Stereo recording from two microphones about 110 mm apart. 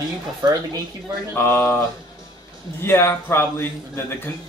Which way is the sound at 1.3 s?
20° left (ahead or behind).